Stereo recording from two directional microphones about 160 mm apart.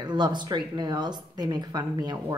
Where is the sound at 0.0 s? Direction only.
30° right (ahead or behind).